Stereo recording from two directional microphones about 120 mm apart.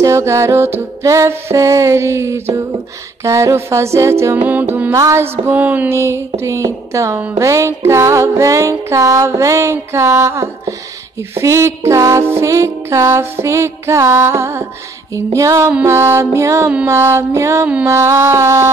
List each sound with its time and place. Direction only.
0.0 s music: 25° right (ahead or behind)
7.2 s music: 15° right (ahead or behind)